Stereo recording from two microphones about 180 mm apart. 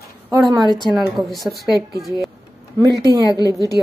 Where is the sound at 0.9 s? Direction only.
Centre (ahead or behind).